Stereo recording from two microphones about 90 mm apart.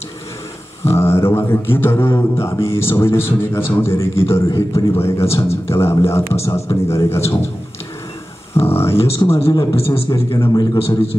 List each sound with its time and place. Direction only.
0.8 s a man's voice: 30° left (ahead or behind)
5.2 s a man's voice: 90° left
5.7 s a man's voice: 30° left (ahead or behind)
8.5 s a man's voice: 25° left (ahead or behind)
8.9 s a man's voice: 90° left
9.5 s a man's voice: 45° left (ahead or behind)
9.8 s a man's voice: 90° left
10.4 s a man's voice: 45° left (ahead or behind)